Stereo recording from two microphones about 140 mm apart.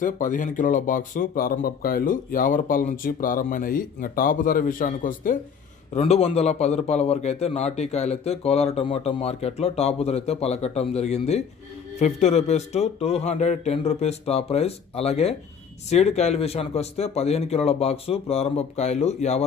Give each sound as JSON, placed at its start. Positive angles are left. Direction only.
{"t": 0.0, "sound": "speech", "side_deg": 70}
{"t": 5.9, "sound": "a man's voice", "side_deg": 50}